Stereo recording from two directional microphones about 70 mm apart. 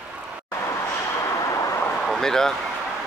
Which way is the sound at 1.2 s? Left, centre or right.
Left.